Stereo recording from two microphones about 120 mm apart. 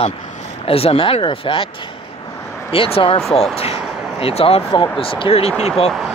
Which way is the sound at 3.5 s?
55° left (ahead or behind).